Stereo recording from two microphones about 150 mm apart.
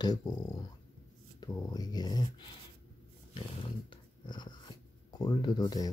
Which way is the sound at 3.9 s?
30° left (ahead or behind).